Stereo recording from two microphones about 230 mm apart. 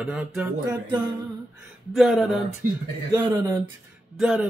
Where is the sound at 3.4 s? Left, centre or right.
Centre.